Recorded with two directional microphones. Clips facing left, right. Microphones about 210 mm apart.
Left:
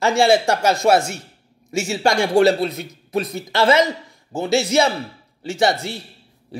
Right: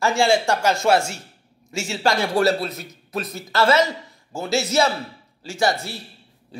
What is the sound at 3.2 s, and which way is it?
Speech, 15° left (ahead or behind).